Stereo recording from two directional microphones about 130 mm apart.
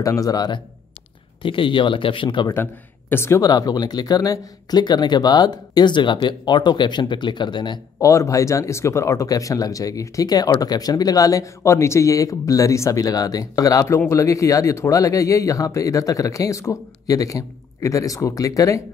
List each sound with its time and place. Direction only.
0.0 s speech: 25° left (ahead or behind)
1.4 s speech: 40° left (ahead or behind)
2.4 s speech: 15° left (ahead or behind); by 7.8 s 35° left (ahead or behind)
8.0 s speech: 25° left (ahead or behind)